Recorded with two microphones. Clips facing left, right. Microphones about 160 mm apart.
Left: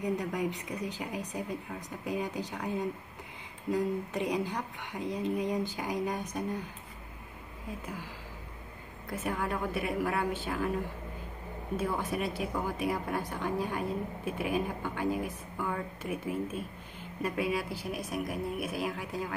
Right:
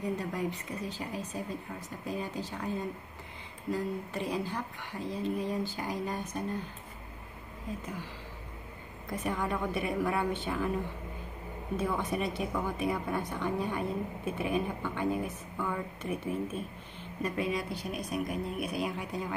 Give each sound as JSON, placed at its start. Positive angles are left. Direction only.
{"t": 0.0, "sound": "a woman's voice", "side_deg": 15}
{"t": 9.2, "sound": "speech", "side_deg": 10}
{"t": 11.7, "sound": "a woman's voice", "side_deg": 10}